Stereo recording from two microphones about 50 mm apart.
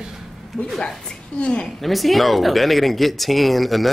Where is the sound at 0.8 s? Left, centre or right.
Centre.